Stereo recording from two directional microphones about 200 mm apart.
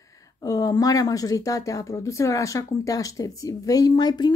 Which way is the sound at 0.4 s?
20° left (ahead or behind).